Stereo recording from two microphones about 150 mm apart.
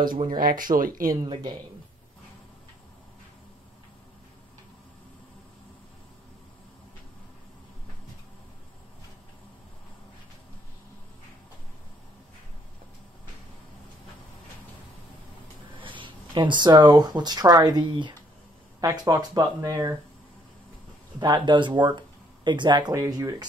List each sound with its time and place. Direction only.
0.0 s speech: 65° right (ahead or behind)
1.0 s speech: 25° right (ahead or behind)
15.8 s speech: 35° right (ahead or behind)
21.2 s speech: 30° right (ahead or behind)